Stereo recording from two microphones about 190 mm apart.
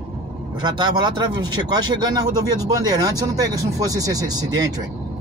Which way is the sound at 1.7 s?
20° right (ahead or behind).